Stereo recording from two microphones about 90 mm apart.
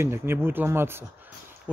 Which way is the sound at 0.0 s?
25° right (ahead or behind).